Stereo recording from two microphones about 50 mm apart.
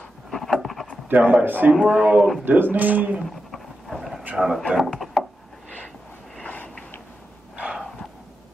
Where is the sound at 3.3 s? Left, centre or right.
Centre.